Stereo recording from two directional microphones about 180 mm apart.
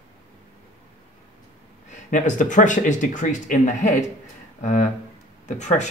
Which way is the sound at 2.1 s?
45° left (ahead or behind).